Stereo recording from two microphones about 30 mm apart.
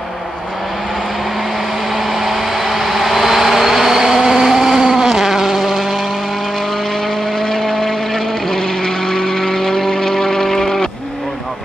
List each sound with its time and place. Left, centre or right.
2.1 s vehicle: centre
7.4 s vehicle: centre
9.8 s a sound: centre